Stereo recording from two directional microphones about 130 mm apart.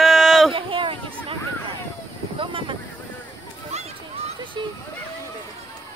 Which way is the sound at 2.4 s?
40° right (ahead or behind).